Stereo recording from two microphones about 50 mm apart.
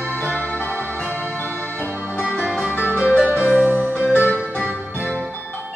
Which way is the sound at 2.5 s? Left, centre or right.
Right.